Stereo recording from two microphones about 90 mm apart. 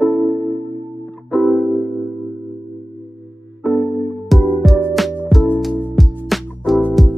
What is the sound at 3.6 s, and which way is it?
Music, 5° left (ahead or behind).